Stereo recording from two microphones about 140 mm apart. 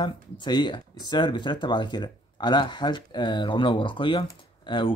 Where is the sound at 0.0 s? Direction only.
30° left (ahead or behind).